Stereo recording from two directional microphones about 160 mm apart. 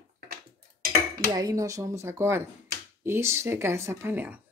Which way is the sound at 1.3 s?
20° right (ahead or behind).